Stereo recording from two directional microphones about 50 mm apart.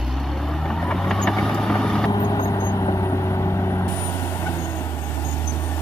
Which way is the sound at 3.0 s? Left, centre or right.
Left.